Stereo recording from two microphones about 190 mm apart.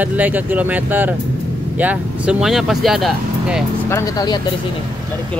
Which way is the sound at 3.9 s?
15° left (ahead or behind).